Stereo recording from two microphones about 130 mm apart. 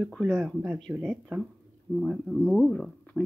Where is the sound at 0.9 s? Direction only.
20° right (ahead or behind).